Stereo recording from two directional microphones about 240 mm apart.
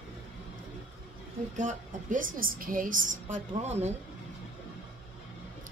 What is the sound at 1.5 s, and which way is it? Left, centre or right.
A woman's voice, right.